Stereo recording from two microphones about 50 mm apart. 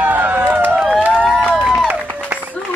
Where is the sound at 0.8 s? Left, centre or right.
Centre.